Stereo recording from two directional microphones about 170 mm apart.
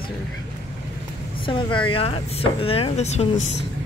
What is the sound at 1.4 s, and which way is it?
Speech, 30° left (ahead or behind).